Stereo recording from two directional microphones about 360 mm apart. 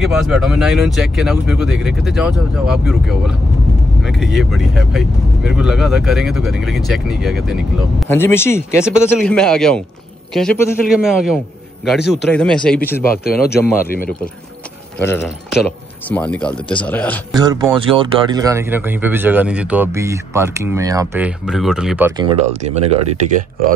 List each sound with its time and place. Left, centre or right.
0.0 s speech: centre
13.1 s speech: left
15.0 s speech: centre
17.4 s speech: centre